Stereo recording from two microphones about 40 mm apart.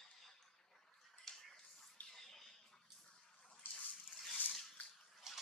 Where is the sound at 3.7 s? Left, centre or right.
Left.